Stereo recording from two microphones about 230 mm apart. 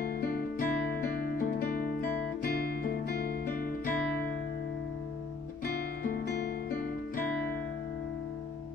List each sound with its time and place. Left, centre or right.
0.0 s music: left
6.0 s music: left